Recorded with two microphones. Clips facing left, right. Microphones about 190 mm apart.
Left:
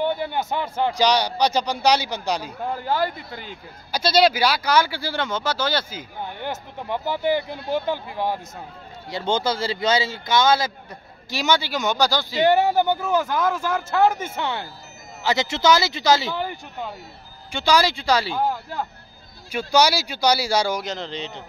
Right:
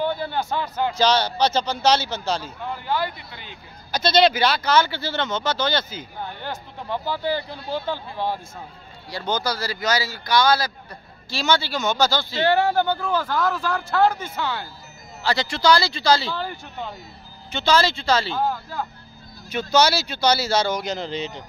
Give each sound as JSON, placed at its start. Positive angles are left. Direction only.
{"t": 0.0, "sound": "a man's voice", "side_deg": 20}
{"t": 2.6, "sound": "speech", "side_deg": 40}
{"t": 3.9, "sound": "speech", "side_deg": 10}
{"t": 6.5, "sound": "speech", "side_deg": 20}
{"t": 9.1, "sound": "a man's voice", "side_deg": 25}
{"t": 19.7, "sound": "speech", "side_deg": 15}
{"t": 20.8, "sound": "speech", "side_deg": -5}